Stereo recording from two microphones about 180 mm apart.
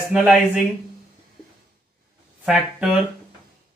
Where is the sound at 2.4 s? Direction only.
5° right (ahead or behind).